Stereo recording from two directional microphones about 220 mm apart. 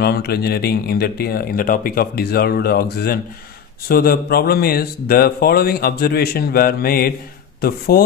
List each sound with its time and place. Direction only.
0.0 s speech: 45° left (ahead or behind)